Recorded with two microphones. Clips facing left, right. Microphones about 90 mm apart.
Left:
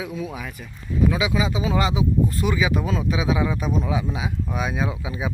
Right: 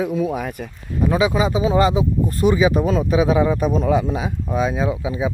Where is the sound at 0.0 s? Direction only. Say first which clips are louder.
Right 9 dB; 50° right (ahead or behind).